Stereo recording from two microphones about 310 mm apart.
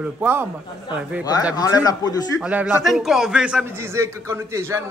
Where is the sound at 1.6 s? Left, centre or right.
Centre.